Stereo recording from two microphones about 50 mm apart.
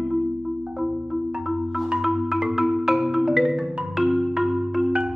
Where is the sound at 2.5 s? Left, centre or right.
Centre.